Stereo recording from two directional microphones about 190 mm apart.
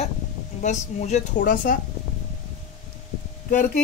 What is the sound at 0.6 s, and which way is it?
Speech, 40° left (ahead or behind).